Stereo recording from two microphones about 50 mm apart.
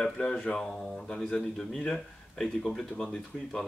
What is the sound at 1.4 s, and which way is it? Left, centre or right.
Speech, centre.